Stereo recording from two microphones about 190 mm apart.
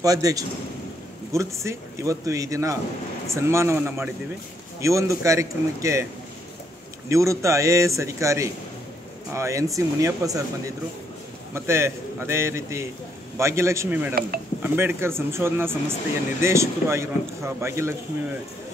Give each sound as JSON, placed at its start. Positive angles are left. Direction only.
{"t": 0.0, "sound": "a man's voice", "side_deg": -20}
{"t": 7.1, "sound": "speech", "side_deg": -15}
{"t": 11.5, "sound": "speech", "side_deg": -15}